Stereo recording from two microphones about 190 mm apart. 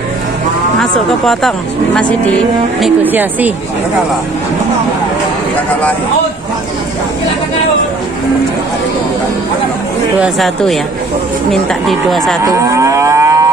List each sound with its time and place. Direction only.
0.7 s speech: centre (ahead or behind)
2.8 s speech: 10° right (ahead or behind)
10.2 s speech: centre (ahead or behind)
12.4 s livestock: 15° right (ahead or behind)